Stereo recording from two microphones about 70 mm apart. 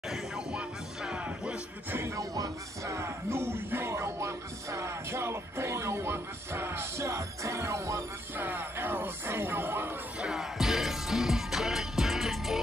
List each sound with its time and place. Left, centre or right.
0.1 s music: centre
2.0 s music: right
8.4 s music: right
10.2 s music: centre